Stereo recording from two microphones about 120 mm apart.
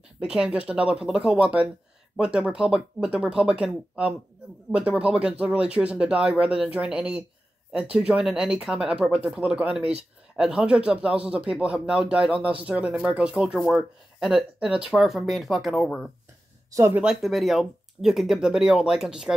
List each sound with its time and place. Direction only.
0.2 s speech: 5° right (ahead or behind)